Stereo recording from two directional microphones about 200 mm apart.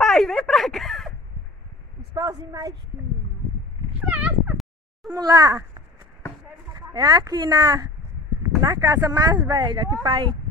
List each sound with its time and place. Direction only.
0.0 s a sound: centre (ahead or behind)
2.1 s a woman's voice: 20° right (ahead or behind)
4.1 s cat: 5° right (ahead or behind)
5.1 s a child's voice: 20° right (ahead or behind)